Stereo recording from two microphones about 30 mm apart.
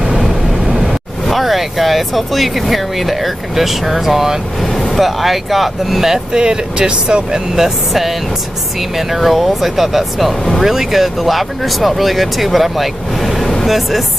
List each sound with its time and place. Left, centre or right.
1.3 s speech: centre
6.3 s speech: right
8.9 s speech: centre